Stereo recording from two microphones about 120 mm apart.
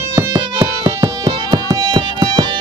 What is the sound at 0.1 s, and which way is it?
Music, 25° right (ahead or behind).